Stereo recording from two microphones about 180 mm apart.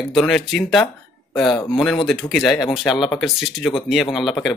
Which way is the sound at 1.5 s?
25° left (ahead or behind).